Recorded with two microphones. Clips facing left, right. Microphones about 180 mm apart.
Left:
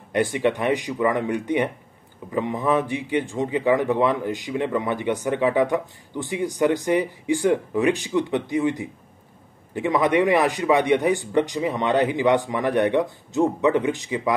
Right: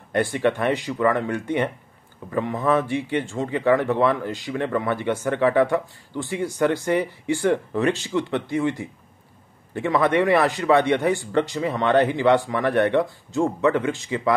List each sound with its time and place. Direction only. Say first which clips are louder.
0.1 s speech: even; 15° left (ahead or behind)